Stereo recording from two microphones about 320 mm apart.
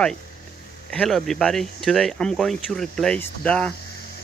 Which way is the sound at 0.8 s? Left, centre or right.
Centre.